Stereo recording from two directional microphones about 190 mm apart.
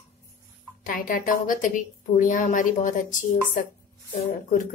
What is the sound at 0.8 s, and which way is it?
Speech, 50° left (ahead or behind).